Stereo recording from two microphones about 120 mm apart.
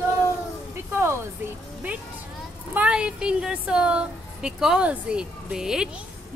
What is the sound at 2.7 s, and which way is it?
Child singing, 10° right (ahead or behind).